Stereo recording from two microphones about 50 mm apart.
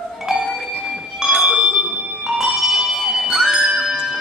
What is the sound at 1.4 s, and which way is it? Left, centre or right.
Bell, right.